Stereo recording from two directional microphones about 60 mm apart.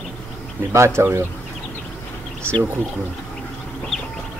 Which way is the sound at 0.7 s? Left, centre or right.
Right.